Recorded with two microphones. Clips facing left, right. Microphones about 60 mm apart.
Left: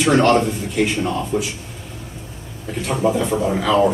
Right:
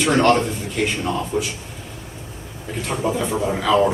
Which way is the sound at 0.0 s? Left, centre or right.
Centre.